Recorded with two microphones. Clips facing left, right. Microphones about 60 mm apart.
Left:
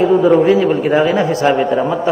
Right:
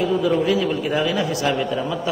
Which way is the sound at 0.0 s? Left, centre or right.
Left.